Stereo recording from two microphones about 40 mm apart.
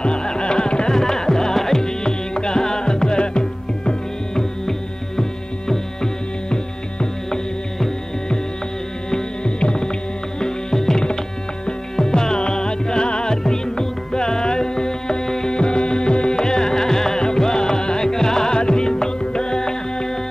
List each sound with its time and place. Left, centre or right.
0.0 s music: left
4.4 s tabla: centre
6.5 s music: left
9.1 s music: left